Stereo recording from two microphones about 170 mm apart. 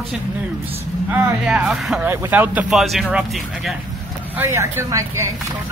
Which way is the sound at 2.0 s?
15° right (ahead or behind).